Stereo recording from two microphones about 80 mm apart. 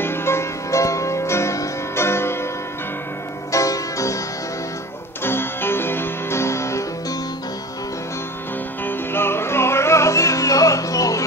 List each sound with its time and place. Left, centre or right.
0.0 s music: left
3.5 s music: left
5.2 s music: left
8.8 s music: left